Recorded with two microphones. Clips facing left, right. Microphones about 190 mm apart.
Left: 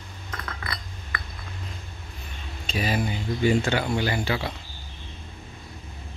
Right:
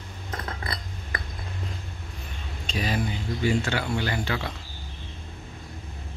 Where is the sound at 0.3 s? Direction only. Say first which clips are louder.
Right 2 dB; 30° right (ahead or behind).